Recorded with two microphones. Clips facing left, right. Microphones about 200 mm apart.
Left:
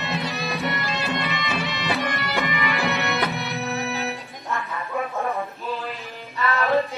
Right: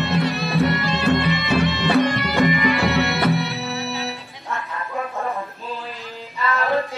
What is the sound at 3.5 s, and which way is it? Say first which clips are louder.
Music: even; 15° left (ahead or behind).